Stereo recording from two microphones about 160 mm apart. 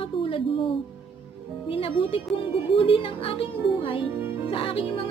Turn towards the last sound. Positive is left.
turn(degrees=35)  # may be behind; listen again after turning